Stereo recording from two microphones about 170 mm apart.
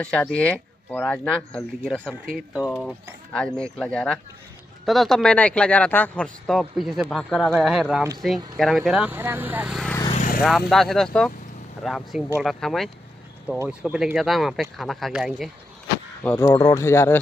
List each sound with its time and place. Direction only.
0.0 s speech: 5° left (ahead or behind)
2.3 s speech: 5° right (ahead or behind)
10.1 s vehicle: 50° left (ahead or behind)
10.7 s speech: centre (ahead or behind)
13.5 s speech: 10° right (ahead or behind)
16.3 s speech: 20° left (ahead or behind)